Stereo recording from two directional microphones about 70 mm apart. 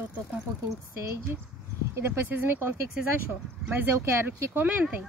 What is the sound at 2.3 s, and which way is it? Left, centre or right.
Speech, right.